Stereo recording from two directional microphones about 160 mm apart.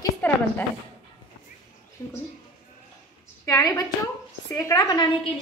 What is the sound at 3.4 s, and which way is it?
A woman's voice, 20° left (ahead or behind).